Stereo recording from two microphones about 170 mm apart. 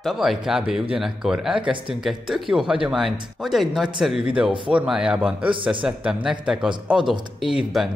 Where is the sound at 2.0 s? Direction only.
Centre (ahead or behind).